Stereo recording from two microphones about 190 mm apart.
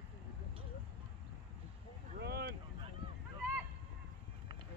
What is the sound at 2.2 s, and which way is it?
Vehicle, 60° right (ahead or behind).